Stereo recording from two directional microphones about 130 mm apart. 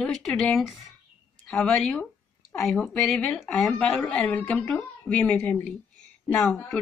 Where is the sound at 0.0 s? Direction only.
5° left (ahead or behind).